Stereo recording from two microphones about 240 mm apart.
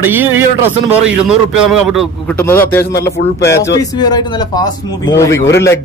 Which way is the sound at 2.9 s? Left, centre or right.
Left.